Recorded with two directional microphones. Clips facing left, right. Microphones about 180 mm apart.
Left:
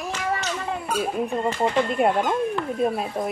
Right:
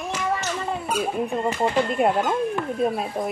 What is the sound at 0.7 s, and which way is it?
Speech, centre (ahead or behind).